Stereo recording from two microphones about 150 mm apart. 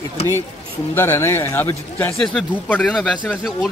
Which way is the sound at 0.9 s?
15° left (ahead or behind).